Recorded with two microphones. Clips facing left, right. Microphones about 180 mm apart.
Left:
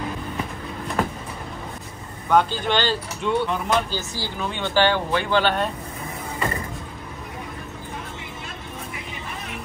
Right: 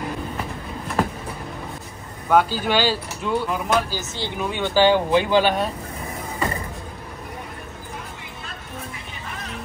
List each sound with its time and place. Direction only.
2.2 s speech: 5° right (ahead or behind)
4.1 s speech: 20° right (ahead or behind)
4.5 s speech: 10° right (ahead or behind)